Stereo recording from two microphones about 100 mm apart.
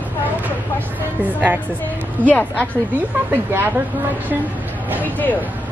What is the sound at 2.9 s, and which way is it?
Speech, 20° right (ahead or behind).